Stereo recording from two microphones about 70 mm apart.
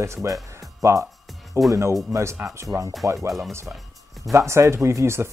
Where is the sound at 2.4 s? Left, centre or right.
Right.